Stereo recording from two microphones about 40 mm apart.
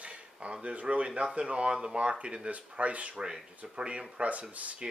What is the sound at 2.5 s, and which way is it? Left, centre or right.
Speech, right.